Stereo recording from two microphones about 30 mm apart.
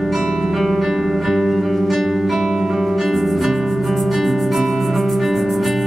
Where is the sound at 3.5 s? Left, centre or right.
Centre.